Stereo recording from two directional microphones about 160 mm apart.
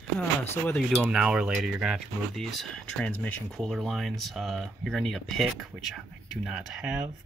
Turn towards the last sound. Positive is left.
turn(degrees=0)  # may be behind; listen again after turning